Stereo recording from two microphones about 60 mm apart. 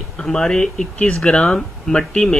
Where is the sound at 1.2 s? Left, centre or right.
Centre.